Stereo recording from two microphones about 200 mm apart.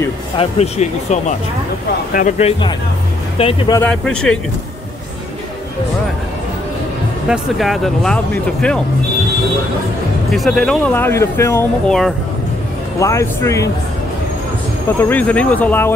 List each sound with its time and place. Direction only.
0.4 s speech: 30° left (ahead or behind)
3.7 s speech: 5° left (ahead or behind)
7.2 s speech: centre (ahead or behind)
10.3 s speech: centre (ahead or behind)
13.0 s speech: 15° left (ahead or behind)
15.0 s speech: 10° left (ahead or behind)